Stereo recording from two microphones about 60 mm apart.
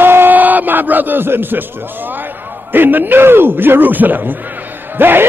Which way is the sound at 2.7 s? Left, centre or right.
Right.